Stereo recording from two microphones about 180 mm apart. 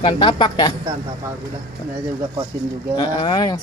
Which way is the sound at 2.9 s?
25° left (ahead or behind).